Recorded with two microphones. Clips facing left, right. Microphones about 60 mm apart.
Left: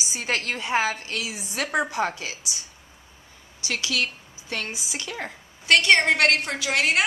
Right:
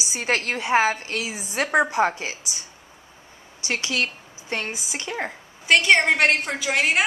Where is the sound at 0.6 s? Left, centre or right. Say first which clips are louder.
Right 4 dB; centre; by 2.3 s right.